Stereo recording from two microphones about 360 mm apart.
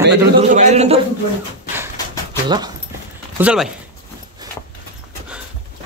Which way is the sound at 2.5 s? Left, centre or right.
Centre.